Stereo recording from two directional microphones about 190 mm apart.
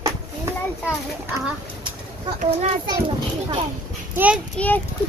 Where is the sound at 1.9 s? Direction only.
25° right (ahead or behind).